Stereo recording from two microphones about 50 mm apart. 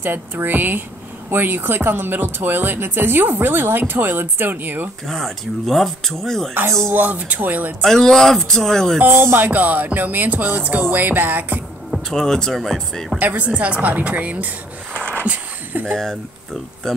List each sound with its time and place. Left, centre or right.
0.0 s music: right
1.3 s speech: right
5.0 s speech: centre
6.9 s music: right
7.8 s speech: centre
9.0 s speech: right
9.5 s music: right
12.1 s speech: centre
13.2 s music: right
13.5 s a woman's voice: right
15.9 s speech: centre